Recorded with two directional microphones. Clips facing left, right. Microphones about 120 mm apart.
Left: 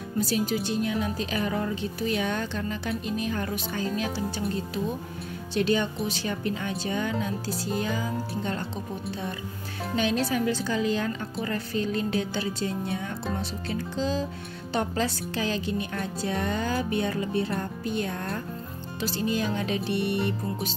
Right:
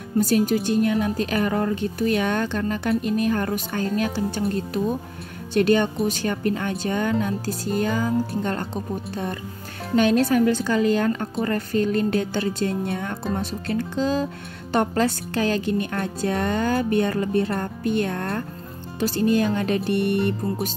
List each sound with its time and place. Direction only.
0.2 s speech: 50° right (ahead or behind)
5.5 s speech: 55° right (ahead or behind)
9.1 s speech: 55° right (ahead or behind)